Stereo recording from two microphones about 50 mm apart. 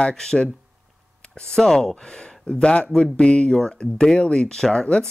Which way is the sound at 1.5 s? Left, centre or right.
Centre.